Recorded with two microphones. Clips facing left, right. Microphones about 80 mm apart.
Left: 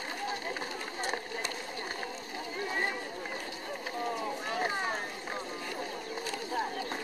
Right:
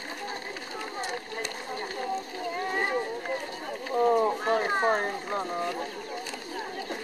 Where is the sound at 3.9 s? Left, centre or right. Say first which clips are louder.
Right 13 dB; right.